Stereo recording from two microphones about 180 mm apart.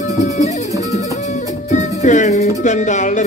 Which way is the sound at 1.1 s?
40° left (ahead or behind).